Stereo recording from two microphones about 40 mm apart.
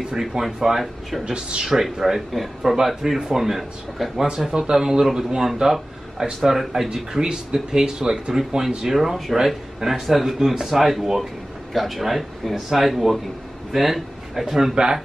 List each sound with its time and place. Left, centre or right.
0.0 s a man's voice: centre
1.2 s speech: right
1.6 s speech: centre
4.5 s speech: centre
6.6 s a man's voice: centre
6.9 s a man's voice: centre